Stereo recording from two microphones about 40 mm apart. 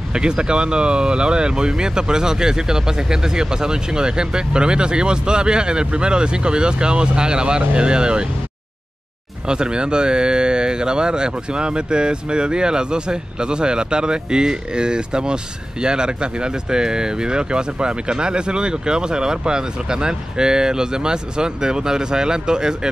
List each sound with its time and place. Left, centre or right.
0.1 s speech: right
9.5 s speech: right